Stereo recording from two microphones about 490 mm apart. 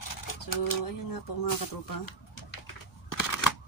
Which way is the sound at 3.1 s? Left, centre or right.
Left.